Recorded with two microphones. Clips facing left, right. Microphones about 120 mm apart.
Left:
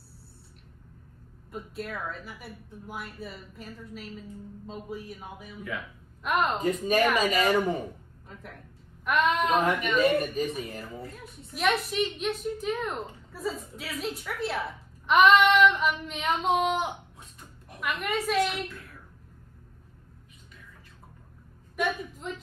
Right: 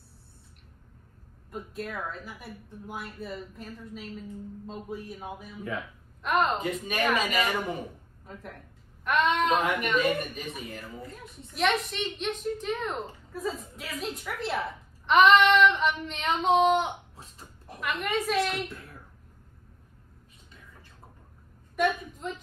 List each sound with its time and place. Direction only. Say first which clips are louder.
1.5 s a woman's voice: even; centre (ahead or behind)
10.2 s speech: left 8 dB; 35° left (ahead or behind)
11.1 s a woman's voice: left 1 dB; centre (ahead or behind)
17.2 s a sound: right 1 dB; 30° right (ahead or behind)
17.7 s a woman's voice: even; centre (ahead or behind)
21.7 s a woman's voice: right 3 dB; centre (ahead or behind)